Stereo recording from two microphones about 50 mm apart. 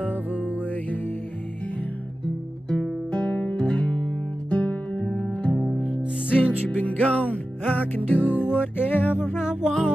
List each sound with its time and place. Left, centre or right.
0.1 s music: right
0.7 s music: left
3.1 s music: left
9.4 s music: centre